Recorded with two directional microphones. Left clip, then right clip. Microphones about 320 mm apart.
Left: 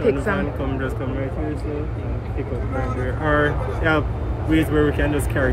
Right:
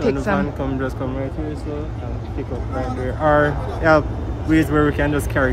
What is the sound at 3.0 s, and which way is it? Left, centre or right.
Speech, right.